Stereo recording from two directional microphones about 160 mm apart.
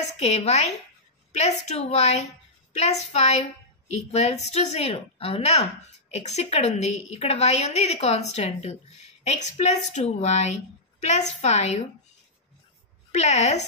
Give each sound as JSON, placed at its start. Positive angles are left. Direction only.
{"t": 0.2, "sound": "a woman's voice", "side_deg": 45}
{"t": 13.1, "sound": "a woman's voice", "side_deg": 45}